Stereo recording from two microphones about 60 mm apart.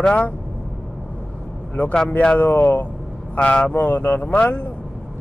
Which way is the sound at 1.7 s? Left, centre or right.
Centre.